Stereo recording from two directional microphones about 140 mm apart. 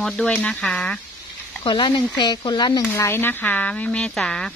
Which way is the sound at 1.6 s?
35° left (ahead or behind).